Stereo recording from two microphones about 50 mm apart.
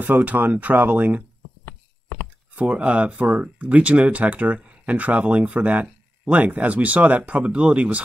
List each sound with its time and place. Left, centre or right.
0.0 s speech: right
2.5 s speech: right